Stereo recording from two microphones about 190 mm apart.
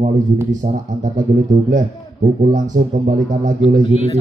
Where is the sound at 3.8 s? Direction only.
30° left (ahead or behind).